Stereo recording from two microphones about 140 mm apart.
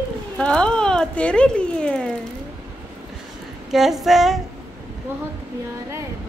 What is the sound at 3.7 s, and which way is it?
Speech, centre (ahead or behind).